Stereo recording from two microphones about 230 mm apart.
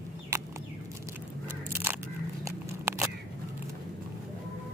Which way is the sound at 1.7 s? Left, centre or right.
Centre.